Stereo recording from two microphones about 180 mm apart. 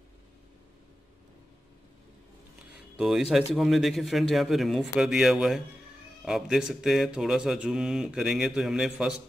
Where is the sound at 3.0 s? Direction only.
5° right (ahead or behind).